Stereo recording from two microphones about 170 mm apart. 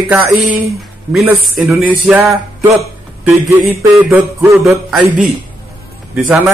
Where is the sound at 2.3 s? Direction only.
15° right (ahead or behind).